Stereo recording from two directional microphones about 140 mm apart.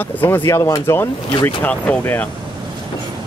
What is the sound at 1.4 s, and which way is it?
Speech, 10° left (ahead or behind).